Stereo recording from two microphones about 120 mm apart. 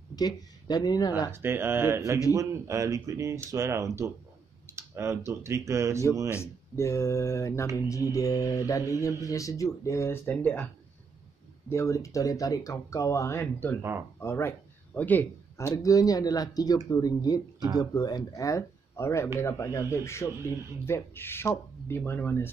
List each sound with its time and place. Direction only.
0.1 s speech: 35° left (ahead or behind)
1.3 s speech: 20° right (ahead or behind)
6.3 s speech: 20° left (ahead or behind)
11.7 s a man's voice: 25° left (ahead or behind)
15.6 s speech: 30° left (ahead or behind)